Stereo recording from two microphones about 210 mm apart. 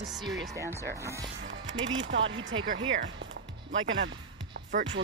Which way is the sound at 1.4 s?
65° right (ahead or behind).